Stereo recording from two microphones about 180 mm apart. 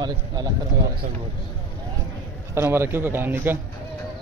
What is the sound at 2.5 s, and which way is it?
A man's voice, 15° right (ahead or behind).